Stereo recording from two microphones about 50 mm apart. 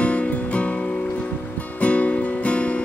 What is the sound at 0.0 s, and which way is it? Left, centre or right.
Music, left.